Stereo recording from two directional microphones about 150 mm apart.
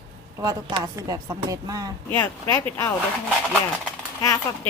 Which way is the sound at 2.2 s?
20° left (ahead or behind).